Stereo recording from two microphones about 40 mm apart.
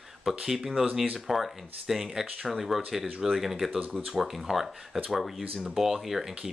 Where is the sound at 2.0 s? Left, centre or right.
Centre.